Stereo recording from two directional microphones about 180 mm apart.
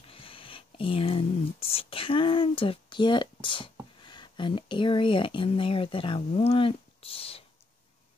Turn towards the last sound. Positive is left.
turn(degrees=30)  # may be behind; listen again after turning